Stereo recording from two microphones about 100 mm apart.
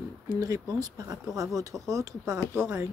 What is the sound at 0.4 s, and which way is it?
Speech, 35° right (ahead or behind).